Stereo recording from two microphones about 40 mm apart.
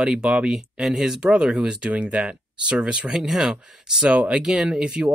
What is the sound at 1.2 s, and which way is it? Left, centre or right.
Speech, right.